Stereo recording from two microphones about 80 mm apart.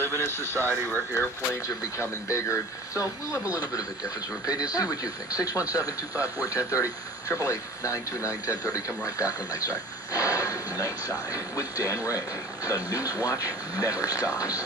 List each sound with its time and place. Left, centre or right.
0.0 s radio: left
0.8 s speech: left
2.0 s speech: left
4.7 s speech: left